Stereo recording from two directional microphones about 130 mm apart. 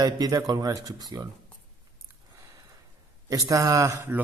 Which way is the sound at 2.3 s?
25° right (ahead or behind).